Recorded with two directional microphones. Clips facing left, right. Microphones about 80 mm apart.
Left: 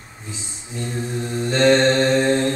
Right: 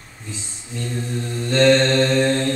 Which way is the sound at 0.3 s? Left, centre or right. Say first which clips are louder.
Right 1 dB; centre.